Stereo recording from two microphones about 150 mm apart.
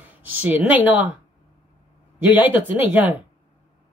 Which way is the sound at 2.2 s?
10° right (ahead or behind).